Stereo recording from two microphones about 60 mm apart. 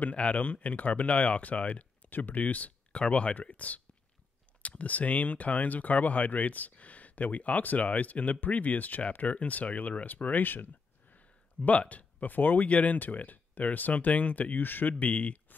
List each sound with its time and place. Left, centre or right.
0.0 s speech: left